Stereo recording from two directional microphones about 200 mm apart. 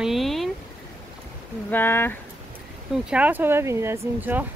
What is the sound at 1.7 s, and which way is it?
Speech, 10° left (ahead or behind).